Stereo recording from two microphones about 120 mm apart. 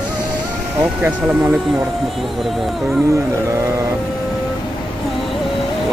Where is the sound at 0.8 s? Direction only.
10° right (ahead or behind).